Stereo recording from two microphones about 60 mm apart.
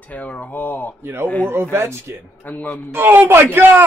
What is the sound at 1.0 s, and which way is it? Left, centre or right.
A man's voice, right.